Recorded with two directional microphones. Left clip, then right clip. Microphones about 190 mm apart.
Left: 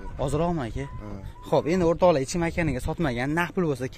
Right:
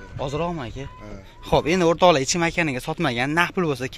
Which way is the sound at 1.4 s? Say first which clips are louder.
Right 4 dB; 5° left (ahead or behind).